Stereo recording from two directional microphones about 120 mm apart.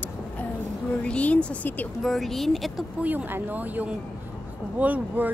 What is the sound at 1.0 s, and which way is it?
Speech, 10° left (ahead or behind).